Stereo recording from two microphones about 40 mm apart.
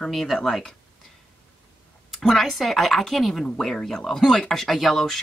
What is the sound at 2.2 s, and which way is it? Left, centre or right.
Speech, centre.